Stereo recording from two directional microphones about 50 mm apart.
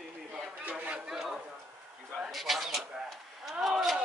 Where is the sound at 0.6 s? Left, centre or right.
Right.